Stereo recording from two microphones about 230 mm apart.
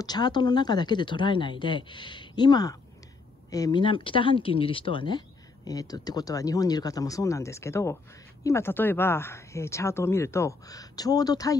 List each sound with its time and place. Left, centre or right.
0.0 s speech: centre